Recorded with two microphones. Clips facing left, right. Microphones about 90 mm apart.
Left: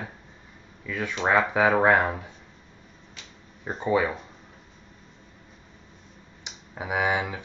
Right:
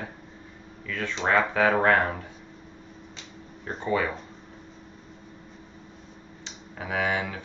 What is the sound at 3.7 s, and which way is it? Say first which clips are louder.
Speech: left 3 dB; 15° left (ahead or behind).